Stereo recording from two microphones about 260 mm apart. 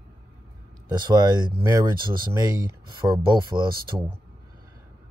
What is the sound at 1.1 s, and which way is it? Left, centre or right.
Speech, centre.